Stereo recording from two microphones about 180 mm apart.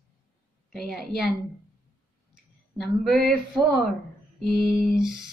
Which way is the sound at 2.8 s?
Centre (ahead or behind).